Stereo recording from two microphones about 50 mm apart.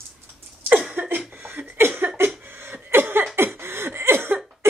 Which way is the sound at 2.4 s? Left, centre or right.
Right.